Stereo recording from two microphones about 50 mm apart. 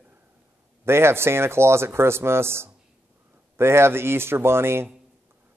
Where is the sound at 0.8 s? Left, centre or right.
Right.